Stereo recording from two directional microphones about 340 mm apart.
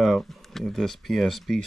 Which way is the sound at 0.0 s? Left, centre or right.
Centre.